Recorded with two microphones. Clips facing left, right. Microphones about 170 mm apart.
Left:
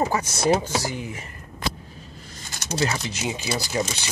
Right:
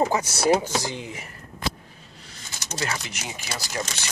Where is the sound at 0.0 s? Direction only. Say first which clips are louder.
Right 1 dB; 15° right (ahead or behind).